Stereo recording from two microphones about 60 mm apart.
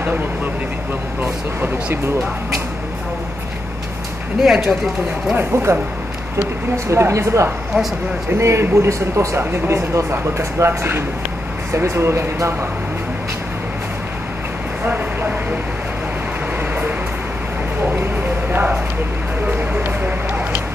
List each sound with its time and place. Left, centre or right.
4.4 s speech: centre
5.3 s speech: right
6.9 s speech: right
9.4 s speech: right
17.9 s a sound: right
19.4 s vehicle: right